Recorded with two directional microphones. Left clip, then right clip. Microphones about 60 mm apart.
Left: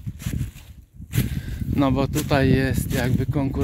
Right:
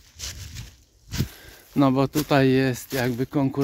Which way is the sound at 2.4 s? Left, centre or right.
Centre.